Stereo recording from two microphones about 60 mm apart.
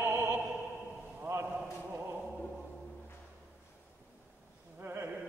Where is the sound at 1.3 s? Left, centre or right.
Right.